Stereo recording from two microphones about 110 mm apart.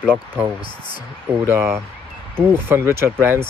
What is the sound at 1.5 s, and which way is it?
Speech, 25° right (ahead or behind).